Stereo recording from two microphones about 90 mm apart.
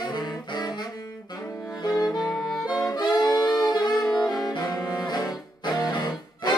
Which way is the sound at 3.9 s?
Centre (ahead or behind).